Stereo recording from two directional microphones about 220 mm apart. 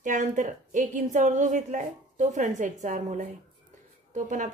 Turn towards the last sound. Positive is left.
turn(degrees=-35)  # may be behind; listen again after turning